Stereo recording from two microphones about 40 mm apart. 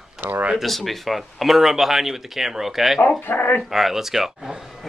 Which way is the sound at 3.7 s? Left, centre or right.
Centre.